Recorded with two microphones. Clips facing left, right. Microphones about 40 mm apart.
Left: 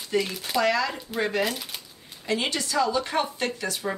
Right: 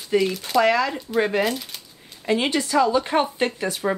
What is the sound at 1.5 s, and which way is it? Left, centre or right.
Speech, centre.